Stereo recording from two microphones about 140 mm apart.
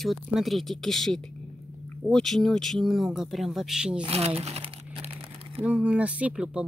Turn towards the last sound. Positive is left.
turn(degrees=-5)  # may be behind; listen again after turning